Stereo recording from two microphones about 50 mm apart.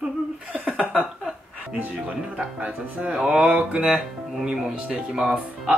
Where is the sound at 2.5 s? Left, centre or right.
Right.